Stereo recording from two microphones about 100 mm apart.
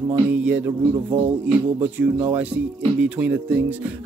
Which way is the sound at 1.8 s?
15° right (ahead or behind).